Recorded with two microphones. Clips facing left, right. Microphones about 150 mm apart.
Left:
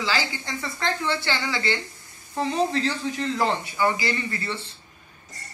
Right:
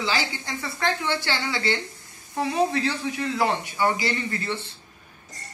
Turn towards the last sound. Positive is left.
turn(degrees=-20)  # may be behind; listen again after turning